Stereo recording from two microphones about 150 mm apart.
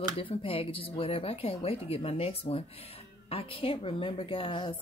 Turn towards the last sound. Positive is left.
turn(degrees=35)  # may be behind; listen again after turning